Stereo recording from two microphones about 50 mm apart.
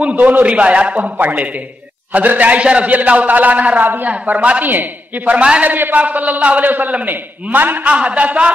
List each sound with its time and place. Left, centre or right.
0.1 s a man's voice: right
5.7 s a man's voice: right
7.9 s a man's voice: right